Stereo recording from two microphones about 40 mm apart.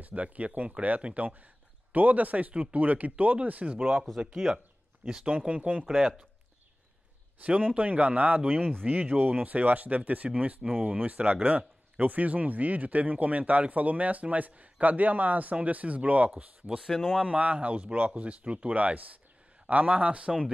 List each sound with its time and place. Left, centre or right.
0.0 s speech: right
4.2 s speech: centre
5.5 s speech: right
5.9 s speech: centre
7.4 s speech: right
16.8 s speech: centre
17.2 s speech: right